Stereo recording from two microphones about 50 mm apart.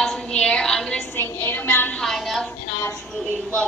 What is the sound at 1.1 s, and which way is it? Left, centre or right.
Speech, left.